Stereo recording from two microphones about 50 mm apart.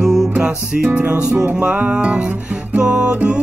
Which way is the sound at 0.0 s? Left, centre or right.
Centre.